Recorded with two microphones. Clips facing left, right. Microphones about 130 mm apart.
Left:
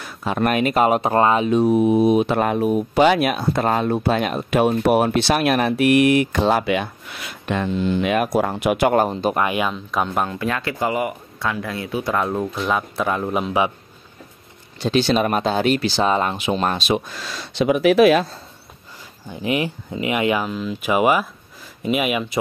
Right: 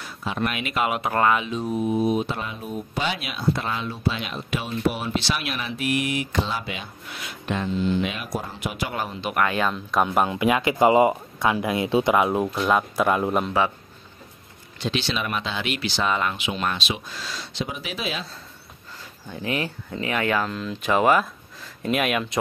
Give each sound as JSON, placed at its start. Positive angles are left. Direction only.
{"t": 0.0, "sound": "speech", "side_deg": 50}
{"t": 1.5, "sound": "speech", "side_deg": 65}
{"t": 9.3, "sound": "speech", "side_deg": 15}
{"t": 9.7, "sound": "speech", "side_deg": 0}
{"t": 10.0, "sound": "speech", "side_deg": -10}
{"t": 12.2, "sound": "speech", "side_deg": -10}
{"t": 14.8, "sound": "speech", "side_deg": 45}
{"t": 19.4, "sound": "speech", "side_deg": 15}